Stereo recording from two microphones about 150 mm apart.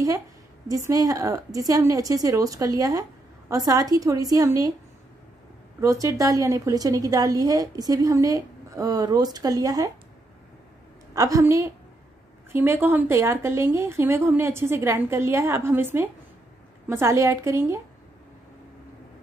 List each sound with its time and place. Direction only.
0.7 s a woman's voice: 25° right (ahead or behind)
5.8 s a woman's voice: 20° right (ahead or behind)
11.1 s a woman's voice: 20° right (ahead or behind)